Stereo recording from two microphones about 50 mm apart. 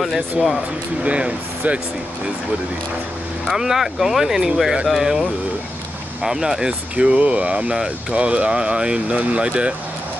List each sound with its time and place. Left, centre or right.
0.0 s speech: centre
1.0 s speech: right
3.4 s speech: centre
7.0 s speech: right